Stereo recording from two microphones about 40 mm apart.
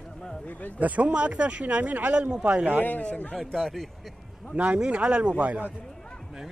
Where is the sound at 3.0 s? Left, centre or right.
Left.